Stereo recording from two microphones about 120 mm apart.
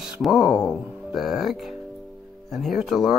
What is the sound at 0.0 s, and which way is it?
Speech, 5° right (ahead or behind).